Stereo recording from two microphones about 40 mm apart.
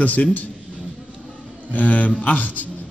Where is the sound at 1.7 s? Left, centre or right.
Left.